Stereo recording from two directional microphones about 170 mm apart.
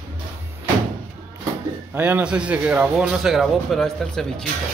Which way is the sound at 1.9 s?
10° right (ahead or behind).